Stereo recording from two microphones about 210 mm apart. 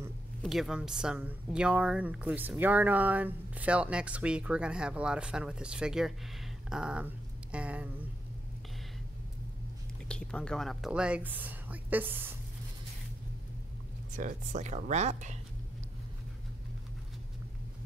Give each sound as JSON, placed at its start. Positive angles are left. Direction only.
{"t": 0.4, "sound": "a woman's voice", "side_deg": 0}
{"t": 10.0, "sound": "speech", "side_deg": 5}
{"t": 14.1, "sound": "speech", "side_deg": -35}